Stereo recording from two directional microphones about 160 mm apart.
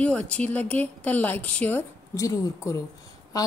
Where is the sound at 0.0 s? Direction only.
10° left (ahead or behind).